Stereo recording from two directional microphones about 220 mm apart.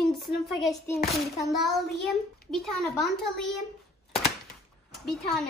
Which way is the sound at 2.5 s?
Centre (ahead or behind).